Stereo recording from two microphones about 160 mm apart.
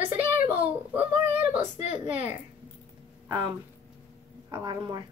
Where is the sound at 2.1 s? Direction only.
10° right (ahead or behind).